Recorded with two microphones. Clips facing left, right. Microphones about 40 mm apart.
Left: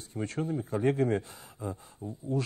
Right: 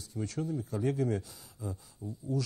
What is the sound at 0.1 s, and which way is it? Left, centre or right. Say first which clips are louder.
A man's voice: left 3 dB; left.